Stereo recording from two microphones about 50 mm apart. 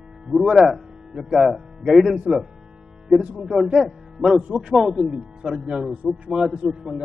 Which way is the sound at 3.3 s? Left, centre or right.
Centre.